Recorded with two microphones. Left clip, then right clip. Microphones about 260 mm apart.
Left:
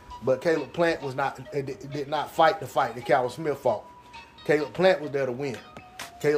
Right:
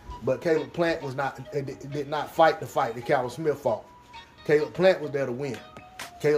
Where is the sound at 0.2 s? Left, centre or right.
Centre.